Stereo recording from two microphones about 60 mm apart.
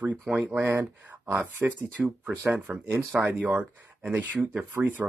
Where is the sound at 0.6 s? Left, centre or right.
Right.